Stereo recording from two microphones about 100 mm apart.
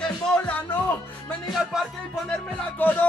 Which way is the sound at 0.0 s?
10° left (ahead or behind).